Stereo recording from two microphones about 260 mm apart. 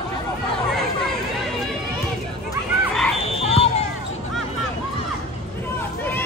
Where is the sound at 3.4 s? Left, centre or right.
Left.